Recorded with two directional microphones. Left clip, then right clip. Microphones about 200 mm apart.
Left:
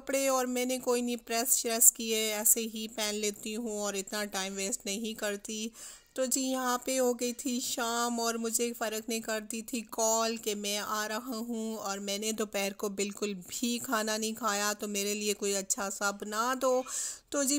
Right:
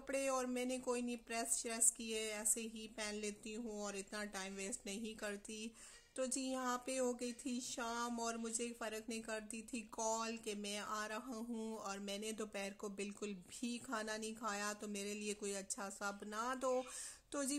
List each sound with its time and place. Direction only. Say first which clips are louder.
0.1 s speech: left 10 dB; 40° left (ahead or behind)